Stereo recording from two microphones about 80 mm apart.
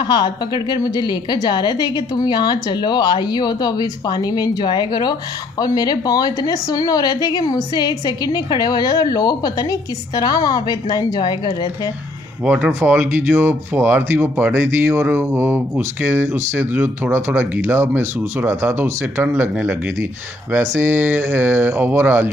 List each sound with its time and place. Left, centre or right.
0.0 s a woman's voice: left
12.4 s speech: centre